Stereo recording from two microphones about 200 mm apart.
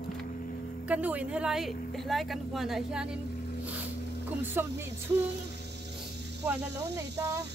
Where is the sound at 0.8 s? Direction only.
5° right (ahead or behind).